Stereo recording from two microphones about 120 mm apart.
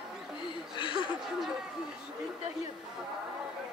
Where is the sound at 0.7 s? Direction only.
45° left (ahead or behind).